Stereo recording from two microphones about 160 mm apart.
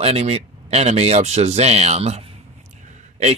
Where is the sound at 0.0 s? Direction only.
40° right (ahead or behind).